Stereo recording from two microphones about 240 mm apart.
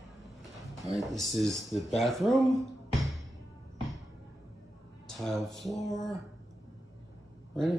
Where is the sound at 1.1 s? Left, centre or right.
Centre.